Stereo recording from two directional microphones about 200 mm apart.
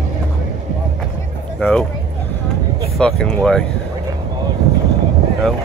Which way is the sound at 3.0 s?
5° left (ahead or behind).